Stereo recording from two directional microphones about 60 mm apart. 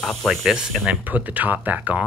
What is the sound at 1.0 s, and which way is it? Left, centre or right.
Speech, right.